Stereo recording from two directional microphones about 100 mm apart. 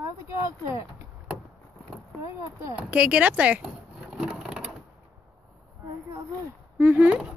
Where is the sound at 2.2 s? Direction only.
30° right (ahead or behind).